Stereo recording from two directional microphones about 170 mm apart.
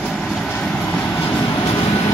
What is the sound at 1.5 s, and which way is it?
Vehicle, 25° left (ahead or behind).